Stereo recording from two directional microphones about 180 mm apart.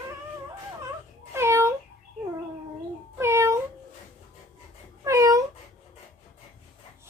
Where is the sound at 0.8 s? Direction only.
15° right (ahead or behind).